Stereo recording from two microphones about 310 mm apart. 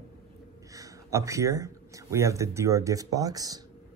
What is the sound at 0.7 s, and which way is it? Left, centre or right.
Speech, centre.